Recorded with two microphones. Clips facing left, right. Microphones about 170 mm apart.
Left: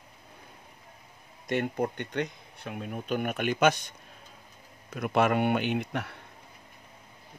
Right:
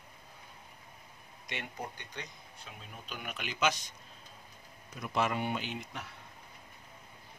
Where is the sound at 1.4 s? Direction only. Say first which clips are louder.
Left 13 dB; 50° left (ahead or behind).